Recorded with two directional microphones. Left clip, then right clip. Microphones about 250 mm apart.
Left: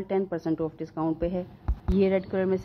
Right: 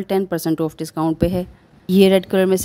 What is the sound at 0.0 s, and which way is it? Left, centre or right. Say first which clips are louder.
A woman's voice: right 8 dB; right.